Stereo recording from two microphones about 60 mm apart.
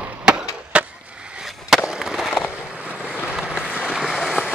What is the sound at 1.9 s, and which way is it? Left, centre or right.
Fireworks, centre.